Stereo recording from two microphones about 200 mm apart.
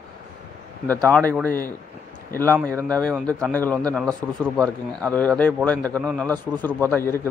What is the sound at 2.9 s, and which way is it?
Speech, 5° left (ahead or behind).